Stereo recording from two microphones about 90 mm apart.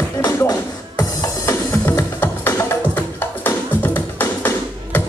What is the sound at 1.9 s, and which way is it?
Music, 20° left (ahead or behind).